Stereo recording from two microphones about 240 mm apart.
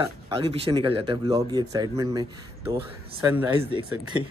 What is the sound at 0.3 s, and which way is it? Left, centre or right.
Speech, right.